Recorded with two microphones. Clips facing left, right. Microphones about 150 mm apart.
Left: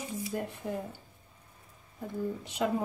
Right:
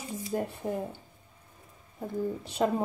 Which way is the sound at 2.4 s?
30° right (ahead or behind).